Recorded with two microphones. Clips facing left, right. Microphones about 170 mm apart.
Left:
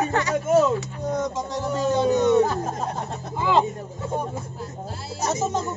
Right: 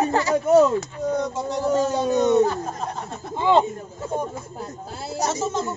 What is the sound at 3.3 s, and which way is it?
Speech, 25° right (ahead or behind).